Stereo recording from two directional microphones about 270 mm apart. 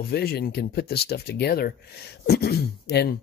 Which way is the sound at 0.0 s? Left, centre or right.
Left.